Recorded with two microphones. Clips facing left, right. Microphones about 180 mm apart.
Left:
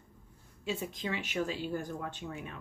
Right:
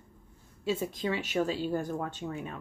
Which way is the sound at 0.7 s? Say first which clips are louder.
Right 5 dB; 40° right (ahead or behind).